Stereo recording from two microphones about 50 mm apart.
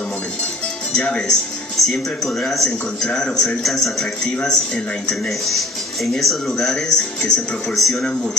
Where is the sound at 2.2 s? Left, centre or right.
Centre.